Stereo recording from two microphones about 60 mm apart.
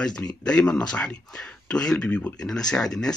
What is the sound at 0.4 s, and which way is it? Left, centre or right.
Speech, centre.